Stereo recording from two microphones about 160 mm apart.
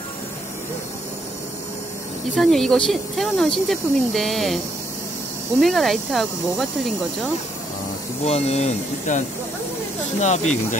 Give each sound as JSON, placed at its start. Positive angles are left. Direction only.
{"t": 2.3, "sound": "speech", "side_deg": 5}
{"t": 5.6, "sound": "speech", "side_deg": 0}
{"t": 8.3, "sound": "speech", "side_deg": 40}
{"t": 10.2, "sound": "speech", "side_deg": 45}